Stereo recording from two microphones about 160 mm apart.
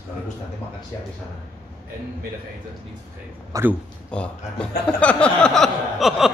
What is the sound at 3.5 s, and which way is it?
Speech, 20° right (ahead or behind).